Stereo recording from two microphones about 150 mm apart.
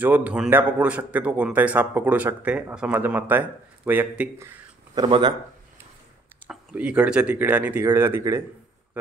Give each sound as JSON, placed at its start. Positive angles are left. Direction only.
{"t": 0.0, "sound": "a man's voice", "side_deg": -10}
{"t": 4.9, "sound": "speech", "side_deg": -30}
{"t": 6.4, "sound": "a man's voice", "side_deg": -5}